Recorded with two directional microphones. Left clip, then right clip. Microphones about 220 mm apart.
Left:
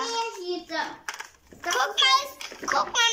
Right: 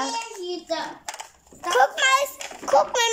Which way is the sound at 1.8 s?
35° right (ahead or behind).